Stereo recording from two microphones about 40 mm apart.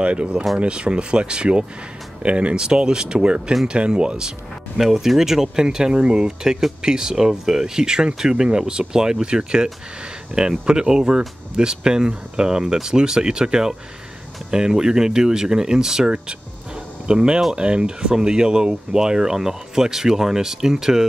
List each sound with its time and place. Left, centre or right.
0.0 s speech: right
4.7 s speech: centre
16.1 s music: right
17.6 s speech: right